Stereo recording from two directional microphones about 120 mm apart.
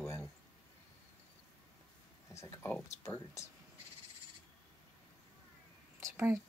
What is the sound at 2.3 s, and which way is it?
Speech, 20° left (ahead or behind).